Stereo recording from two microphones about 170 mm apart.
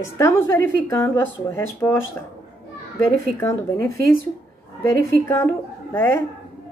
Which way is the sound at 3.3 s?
15° left (ahead or behind).